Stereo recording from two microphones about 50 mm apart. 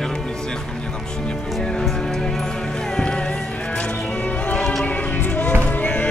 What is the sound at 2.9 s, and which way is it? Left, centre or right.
Music, centre.